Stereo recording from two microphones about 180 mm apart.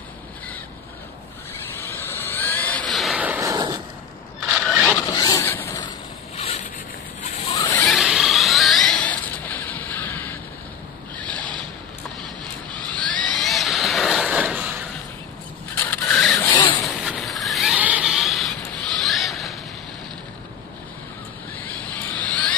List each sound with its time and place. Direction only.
1.8 s vehicle: 10° left (ahead or behind); by 3.8 s 20° right (ahead or behind)
4.6 s a sound: centre (ahead or behind)
5.0 s zipper: 20° left (ahead or behind)
6.3 s boat: 35° left (ahead or behind)
7.2 s rodents: 35° left (ahead or behind)
7.8 s a sound: centre (ahead or behind)
12.7 s vehicle: 5° left (ahead or behind)
15.9 s printer: 5° left (ahead or behind)
16.3 s vehicle: 25° left (ahead or behind)
16.8 s vehicle: centre (ahead or behind)
19.0 s a sound: centre (ahead or behind)
21.5 s vehicle: 10° left (ahead or behind)